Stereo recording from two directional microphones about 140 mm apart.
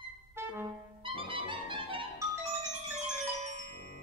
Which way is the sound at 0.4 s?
15° right (ahead or behind).